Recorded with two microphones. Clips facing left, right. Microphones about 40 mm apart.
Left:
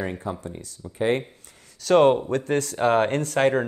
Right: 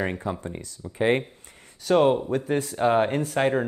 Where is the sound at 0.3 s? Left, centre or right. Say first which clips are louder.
Right 1 dB; right.